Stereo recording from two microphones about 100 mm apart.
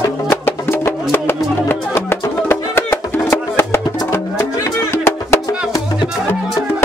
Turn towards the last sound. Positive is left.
turn(degrees=25)  # may be behind; listen again after turning